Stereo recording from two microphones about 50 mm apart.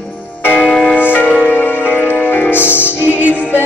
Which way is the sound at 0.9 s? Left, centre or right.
Left.